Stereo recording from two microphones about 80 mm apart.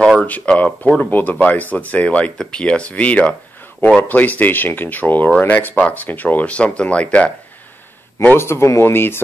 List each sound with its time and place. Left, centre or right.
0.2 s speech: centre
8.4 s speech: left